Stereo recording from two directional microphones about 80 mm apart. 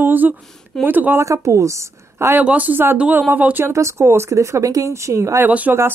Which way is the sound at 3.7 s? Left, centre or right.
Right.